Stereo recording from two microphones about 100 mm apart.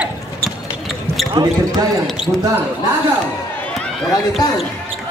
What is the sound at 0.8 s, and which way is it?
Basketball bounce, centre (ahead or behind).